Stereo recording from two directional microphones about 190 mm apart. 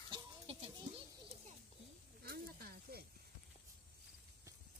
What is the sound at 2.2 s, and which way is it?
Snake, 55° right (ahead or behind).